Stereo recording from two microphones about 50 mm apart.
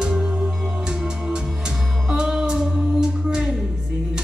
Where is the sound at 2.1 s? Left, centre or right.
Centre.